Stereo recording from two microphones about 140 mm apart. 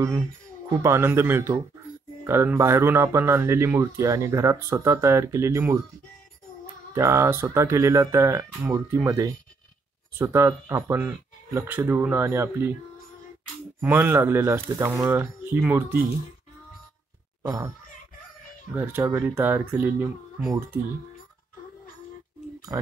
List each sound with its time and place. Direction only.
0.7 s speech: 20° right (ahead or behind)
6.9 s speech: 20° right (ahead or behind)
13.7 s speech: 15° right (ahead or behind)
17.5 s speech: 20° right (ahead or behind)
18.8 s speech: 15° right (ahead or behind)
22.7 s speech: 20° right (ahead or behind)